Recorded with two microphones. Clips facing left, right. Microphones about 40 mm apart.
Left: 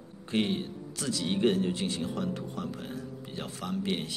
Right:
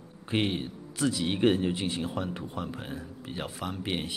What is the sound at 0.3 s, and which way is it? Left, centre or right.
Speech, centre.